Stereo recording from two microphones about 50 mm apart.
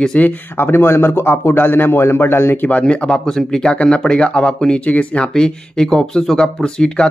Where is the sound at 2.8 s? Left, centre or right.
Left.